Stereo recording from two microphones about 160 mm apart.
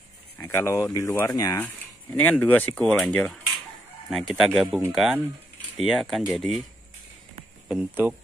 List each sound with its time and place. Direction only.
0.4 s speech: 15° left (ahead or behind)
2.1 s speech: 10° left (ahead or behind)
7.6 s speech: 10° right (ahead or behind)